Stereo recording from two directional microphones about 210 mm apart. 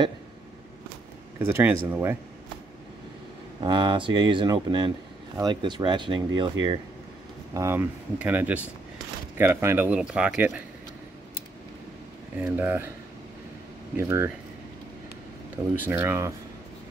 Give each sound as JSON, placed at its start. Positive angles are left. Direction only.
{"t": 1.5, "sound": "speech", "side_deg": -10}
{"t": 3.6, "sound": "speech", "side_deg": -20}
{"t": 7.5, "sound": "speech", "side_deg": -10}
{"t": 12.4, "sound": "speech", "side_deg": -10}
{"t": 13.9, "sound": "speech", "side_deg": -10}
{"t": 15.7, "sound": "speech", "side_deg": -10}